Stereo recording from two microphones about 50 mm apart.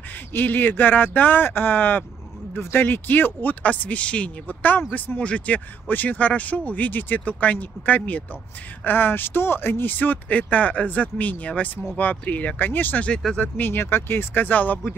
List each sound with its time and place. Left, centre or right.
0.3 s speech: left
4.5 s speech: left
5.2 s speech: left
5.9 s speech: left
8.8 s speech: left